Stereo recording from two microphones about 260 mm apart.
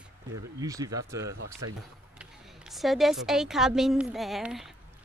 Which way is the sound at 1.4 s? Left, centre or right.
Right.